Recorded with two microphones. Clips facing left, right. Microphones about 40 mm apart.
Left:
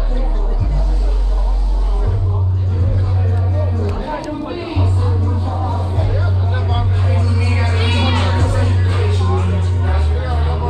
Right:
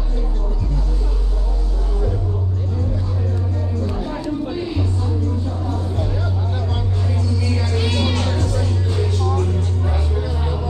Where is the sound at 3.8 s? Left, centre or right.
Left.